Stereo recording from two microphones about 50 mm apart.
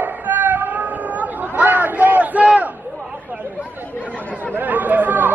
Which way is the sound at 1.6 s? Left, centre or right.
Right.